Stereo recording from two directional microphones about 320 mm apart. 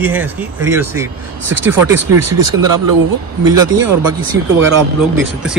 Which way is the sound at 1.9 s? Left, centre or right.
Right.